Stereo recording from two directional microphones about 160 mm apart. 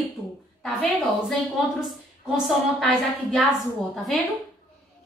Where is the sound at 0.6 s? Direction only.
Centre (ahead or behind).